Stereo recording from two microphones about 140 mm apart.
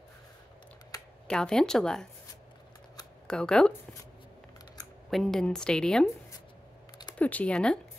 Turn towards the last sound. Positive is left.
turn(degrees=5)  # may be behind; listen again after turning